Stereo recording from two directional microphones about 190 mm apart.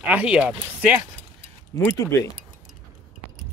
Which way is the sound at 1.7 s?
15° left (ahead or behind).